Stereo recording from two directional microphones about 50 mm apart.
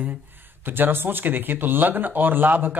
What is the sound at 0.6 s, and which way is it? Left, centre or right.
Speech, right.